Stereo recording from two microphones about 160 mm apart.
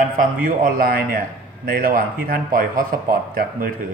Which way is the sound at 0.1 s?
60° right (ahead or behind).